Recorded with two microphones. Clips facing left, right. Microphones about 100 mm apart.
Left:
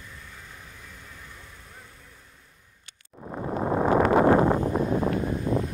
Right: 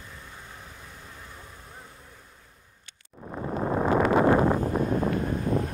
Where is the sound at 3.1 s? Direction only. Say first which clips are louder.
Left 1 dB; 25° left (ahead or behind).